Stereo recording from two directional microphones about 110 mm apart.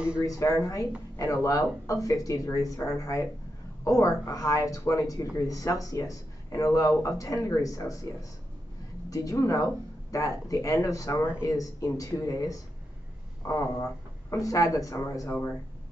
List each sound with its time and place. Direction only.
0.2 s speech: 30° left (ahead or behind)
15.2 s speech: 15° left (ahead or behind)